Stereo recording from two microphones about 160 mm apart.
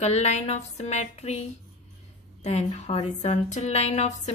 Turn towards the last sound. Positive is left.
turn(degrees=45)  # may be behind; listen again after turning